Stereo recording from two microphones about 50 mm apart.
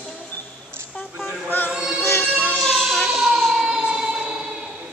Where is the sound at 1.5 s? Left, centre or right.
Left.